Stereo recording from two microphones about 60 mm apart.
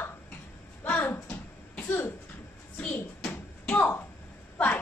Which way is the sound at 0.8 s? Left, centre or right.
Left.